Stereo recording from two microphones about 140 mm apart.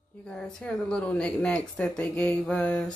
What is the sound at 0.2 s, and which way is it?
A woman's voice, 5° left (ahead or behind).